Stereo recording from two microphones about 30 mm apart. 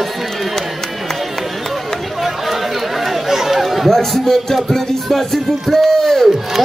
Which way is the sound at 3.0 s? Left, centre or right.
Centre.